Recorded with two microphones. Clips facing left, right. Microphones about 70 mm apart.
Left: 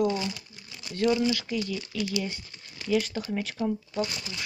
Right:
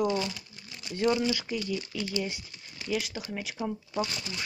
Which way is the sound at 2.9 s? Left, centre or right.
Centre.